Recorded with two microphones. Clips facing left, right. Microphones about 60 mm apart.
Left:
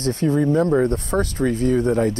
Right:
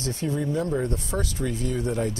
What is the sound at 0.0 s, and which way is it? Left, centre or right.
Speech, left.